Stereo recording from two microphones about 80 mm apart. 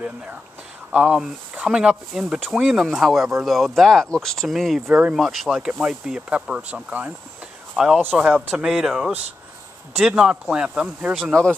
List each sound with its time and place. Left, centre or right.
1.7 s speech: centre
7.7 s speech: centre
8.0 s speech: right
8.5 s speech: centre
11.1 s speech: centre